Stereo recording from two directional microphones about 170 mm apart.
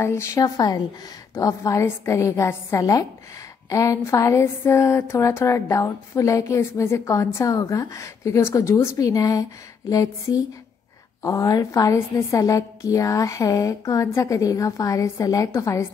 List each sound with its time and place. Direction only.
0.0 s a woman's voice: 15° left (ahead or behind)